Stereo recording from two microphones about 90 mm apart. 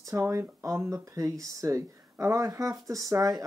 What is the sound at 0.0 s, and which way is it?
Speech, 35° right (ahead or behind).